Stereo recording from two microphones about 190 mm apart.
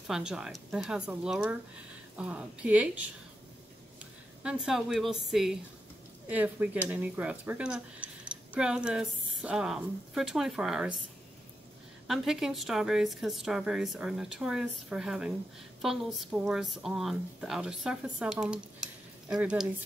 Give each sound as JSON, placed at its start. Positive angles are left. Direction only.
{"t": 0.0, "sound": "a woman's voice", "side_deg": 0}
{"t": 12.1, "sound": "speech", "side_deg": 0}